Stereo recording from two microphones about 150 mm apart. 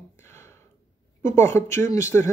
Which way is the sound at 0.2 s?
15° left (ahead or behind).